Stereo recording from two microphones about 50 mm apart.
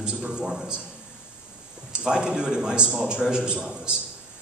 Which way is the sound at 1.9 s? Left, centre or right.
Centre.